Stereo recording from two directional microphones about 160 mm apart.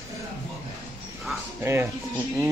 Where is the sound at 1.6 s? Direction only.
15° right (ahead or behind).